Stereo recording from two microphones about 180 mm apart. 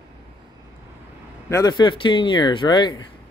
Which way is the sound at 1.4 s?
20° left (ahead or behind).